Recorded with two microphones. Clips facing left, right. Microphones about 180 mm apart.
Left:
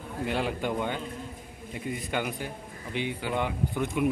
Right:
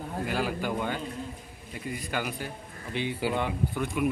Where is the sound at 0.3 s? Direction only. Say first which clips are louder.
Left 1 dB; 25° left (ahead or behind).